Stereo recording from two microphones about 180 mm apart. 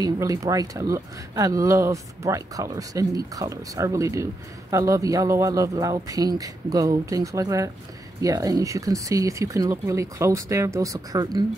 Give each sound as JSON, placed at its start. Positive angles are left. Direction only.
{"t": 0.0, "sound": "speech", "side_deg": -20}